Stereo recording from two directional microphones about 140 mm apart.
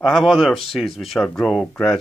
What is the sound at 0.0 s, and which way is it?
Speech, centre (ahead or behind).